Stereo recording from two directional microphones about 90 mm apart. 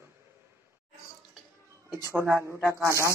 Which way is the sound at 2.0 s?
30° right (ahead or behind).